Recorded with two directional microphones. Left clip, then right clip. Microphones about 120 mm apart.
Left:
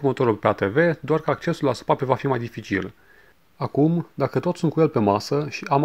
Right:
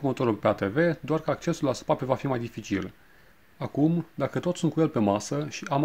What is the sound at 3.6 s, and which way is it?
Speech, 30° left (ahead or behind).